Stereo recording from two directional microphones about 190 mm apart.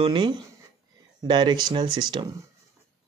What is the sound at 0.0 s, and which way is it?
Speech, 25° right (ahead or behind).